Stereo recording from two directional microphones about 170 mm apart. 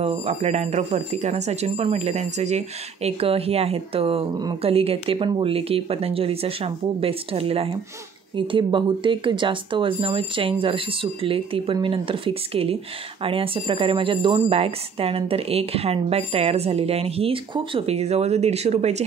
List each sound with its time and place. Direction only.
0.0 s speech: 40° right (ahead or behind)